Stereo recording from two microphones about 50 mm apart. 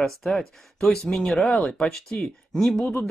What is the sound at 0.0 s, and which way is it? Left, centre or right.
Speech, centre.